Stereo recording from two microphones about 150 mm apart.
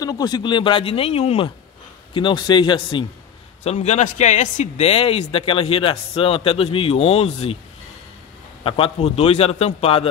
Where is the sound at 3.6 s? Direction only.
50° left (ahead or behind).